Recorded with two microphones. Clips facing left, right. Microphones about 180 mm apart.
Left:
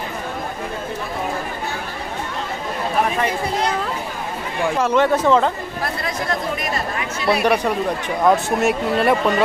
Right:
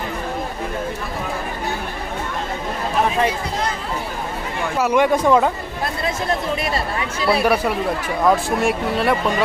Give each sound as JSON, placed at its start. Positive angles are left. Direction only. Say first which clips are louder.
{"t": 4.7, "sound": "speech", "louder": "right 1 dB", "side_deg": -10}
{"t": 6.0, "sound": "speech", "louder": "right 3 dB", "side_deg": -25}
{"t": 7.4, "sound": "speech", "louder": "even", "side_deg": -5}